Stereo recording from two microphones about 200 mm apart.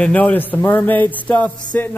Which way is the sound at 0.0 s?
5° left (ahead or behind).